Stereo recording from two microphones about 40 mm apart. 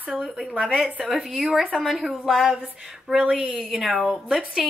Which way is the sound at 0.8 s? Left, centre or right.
Right.